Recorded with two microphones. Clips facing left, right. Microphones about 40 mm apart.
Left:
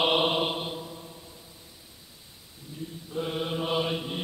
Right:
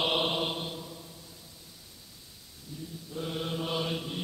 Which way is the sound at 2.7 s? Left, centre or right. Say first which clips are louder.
Left 5 dB; left.